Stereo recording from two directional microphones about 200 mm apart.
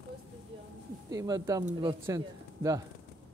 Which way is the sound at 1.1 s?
20° right (ahead or behind).